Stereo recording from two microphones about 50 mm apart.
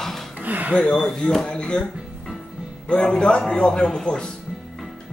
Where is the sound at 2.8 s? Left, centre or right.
Centre.